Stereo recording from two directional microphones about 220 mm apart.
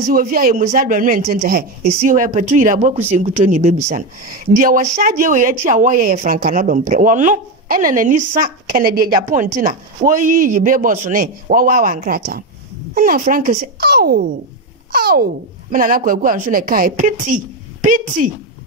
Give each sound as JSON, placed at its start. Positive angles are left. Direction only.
{"t": 0.0, "sound": "a woman's voice", "side_deg": -40}